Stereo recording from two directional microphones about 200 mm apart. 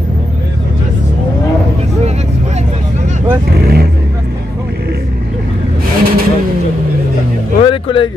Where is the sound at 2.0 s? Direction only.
35° right (ahead or behind).